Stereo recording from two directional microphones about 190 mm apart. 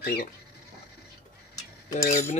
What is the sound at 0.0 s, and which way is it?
Speech, 45° left (ahead or behind).